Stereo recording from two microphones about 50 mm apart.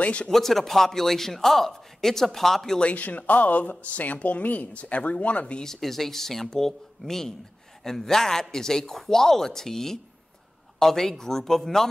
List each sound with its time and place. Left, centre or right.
0.0 s speech: left
0.3 s a man's voice: centre
2.8 s speech: left
5.6 s speech: centre